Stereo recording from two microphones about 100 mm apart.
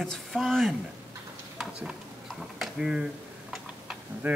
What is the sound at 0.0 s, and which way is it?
Speech, 5° left (ahead or behind).